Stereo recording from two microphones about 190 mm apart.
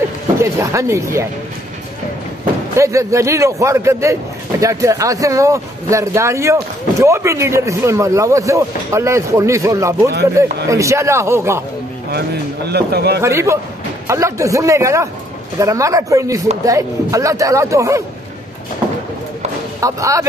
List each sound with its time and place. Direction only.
0.4 s a man's voice: 15° right (ahead or behind)
2.7 s a man's voice: 15° right (ahead or behind)
12.1 s speech: 60° right (ahead or behind)
13.2 s a man's voice: 15° right (ahead or behind)
19.8 s a man's voice: 15° right (ahead or behind)